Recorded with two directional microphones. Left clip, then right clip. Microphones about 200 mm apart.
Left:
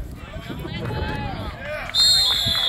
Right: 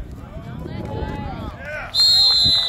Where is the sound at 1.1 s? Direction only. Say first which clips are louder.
Left 1 dB; 10° right (ahead or behind).